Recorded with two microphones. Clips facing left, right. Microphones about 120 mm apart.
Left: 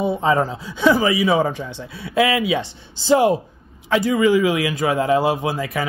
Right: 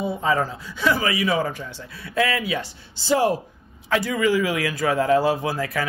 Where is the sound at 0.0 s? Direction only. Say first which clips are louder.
Left 4 dB; 20° left (ahead or behind).